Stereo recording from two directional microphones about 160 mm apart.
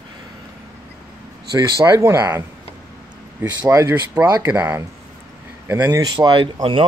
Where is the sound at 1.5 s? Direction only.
20° right (ahead or behind).